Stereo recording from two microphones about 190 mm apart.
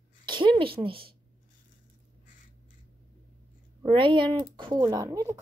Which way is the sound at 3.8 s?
25° right (ahead or behind).